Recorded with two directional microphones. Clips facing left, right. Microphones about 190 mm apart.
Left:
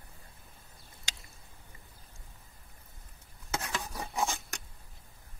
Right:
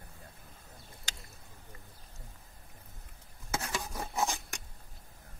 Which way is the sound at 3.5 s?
10° right (ahead or behind).